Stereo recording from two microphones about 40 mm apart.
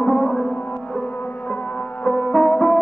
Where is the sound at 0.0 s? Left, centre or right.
Left.